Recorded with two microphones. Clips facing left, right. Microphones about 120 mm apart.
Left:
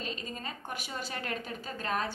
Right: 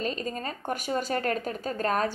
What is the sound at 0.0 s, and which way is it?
Speech, 45° right (ahead or behind).